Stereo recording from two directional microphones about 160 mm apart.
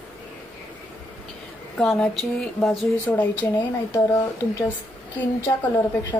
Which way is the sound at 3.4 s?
25° left (ahead or behind).